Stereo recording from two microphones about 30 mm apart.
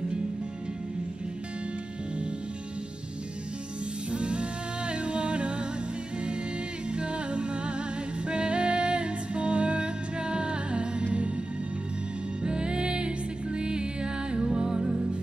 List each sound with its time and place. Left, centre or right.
4.1 s music: right
6.9 s music: right
12.4 s music: right